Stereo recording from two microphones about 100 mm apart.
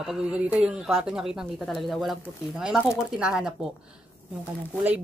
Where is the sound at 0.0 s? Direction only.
5° right (ahead or behind).